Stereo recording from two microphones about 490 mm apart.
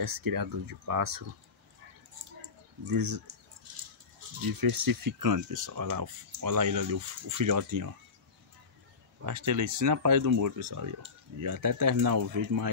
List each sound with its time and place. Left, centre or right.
0.0 s speech: right
2.8 s speech: right
4.4 s speech: right
9.2 s speech: right